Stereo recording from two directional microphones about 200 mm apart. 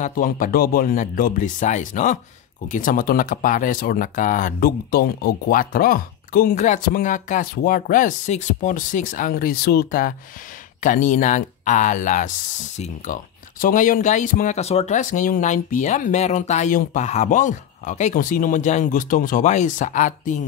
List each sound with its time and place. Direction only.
0.0 s speech: 45° left (ahead or behind)